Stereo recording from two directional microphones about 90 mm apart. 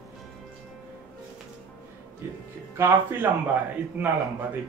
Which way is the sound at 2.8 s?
20° right (ahead or behind).